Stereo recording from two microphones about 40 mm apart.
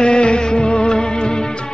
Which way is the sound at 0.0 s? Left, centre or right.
Left.